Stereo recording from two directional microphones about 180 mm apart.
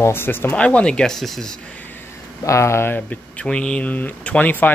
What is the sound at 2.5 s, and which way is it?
Speech, 15° left (ahead or behind).